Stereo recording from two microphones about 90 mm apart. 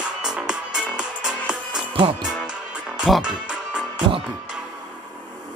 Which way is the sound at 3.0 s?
5° right (ahead or behind).